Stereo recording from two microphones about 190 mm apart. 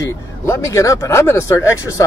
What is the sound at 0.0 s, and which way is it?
Speech, 15° left (ahead or behind).